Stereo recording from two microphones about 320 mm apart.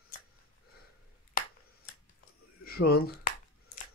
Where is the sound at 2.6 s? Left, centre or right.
Left.